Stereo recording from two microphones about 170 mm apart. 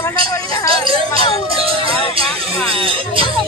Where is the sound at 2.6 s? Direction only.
30° right (ahead or behind).